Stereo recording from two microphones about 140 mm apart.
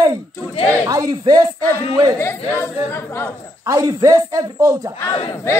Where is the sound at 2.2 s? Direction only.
20° left (ahead or behind).